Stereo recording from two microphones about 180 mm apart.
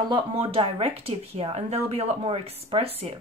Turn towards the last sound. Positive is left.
turn(degrees=-30)  # may be behind; listen again after turning